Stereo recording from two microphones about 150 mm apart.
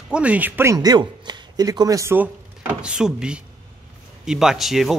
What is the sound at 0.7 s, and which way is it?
Speech, 25° right (ahead or behind).